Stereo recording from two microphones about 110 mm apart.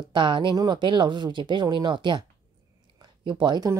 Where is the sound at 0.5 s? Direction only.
40° right (ahead or behind).